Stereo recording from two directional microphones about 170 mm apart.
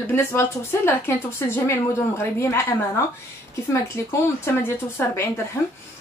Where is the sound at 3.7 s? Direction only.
15° left (ahead or behind).